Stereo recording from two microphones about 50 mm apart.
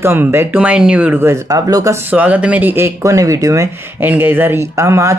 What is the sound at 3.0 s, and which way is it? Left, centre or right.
Speech, right.